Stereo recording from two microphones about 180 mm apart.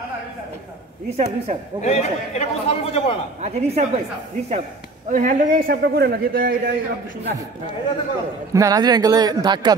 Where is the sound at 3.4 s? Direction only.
35° right (ahead or behind).